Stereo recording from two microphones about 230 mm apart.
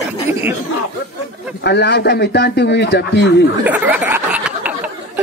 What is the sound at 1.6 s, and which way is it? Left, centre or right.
A man's voice, left.